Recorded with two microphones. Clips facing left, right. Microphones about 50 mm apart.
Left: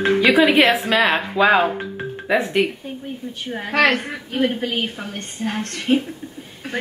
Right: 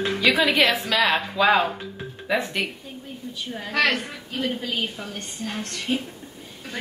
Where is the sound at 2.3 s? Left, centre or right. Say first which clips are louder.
Left 6 dB; left.